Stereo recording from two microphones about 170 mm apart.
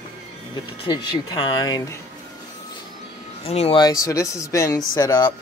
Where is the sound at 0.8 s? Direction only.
25° left (ahead or behind).